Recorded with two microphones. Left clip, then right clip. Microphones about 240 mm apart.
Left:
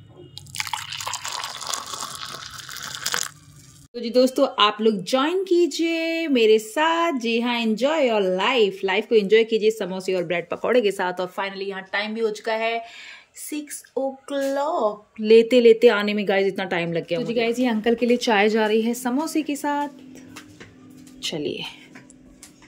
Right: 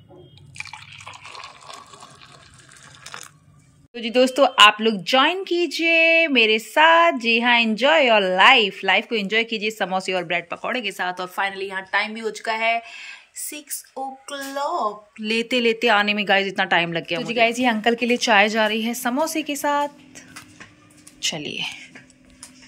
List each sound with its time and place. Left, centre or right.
3.9 s speech: centre
21.2 s speech: centre